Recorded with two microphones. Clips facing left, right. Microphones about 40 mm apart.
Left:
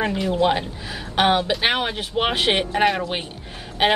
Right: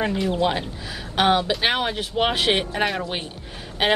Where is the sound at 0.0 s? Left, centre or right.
Centre.